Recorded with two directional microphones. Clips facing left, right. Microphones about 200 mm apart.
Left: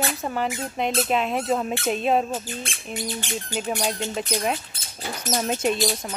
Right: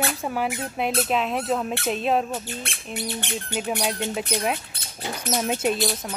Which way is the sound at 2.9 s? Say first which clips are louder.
Even; 65° right (ahead or behind).